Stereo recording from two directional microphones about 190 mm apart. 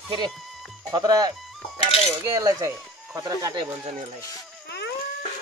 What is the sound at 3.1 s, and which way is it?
Speech, 20° right (ahead or behind).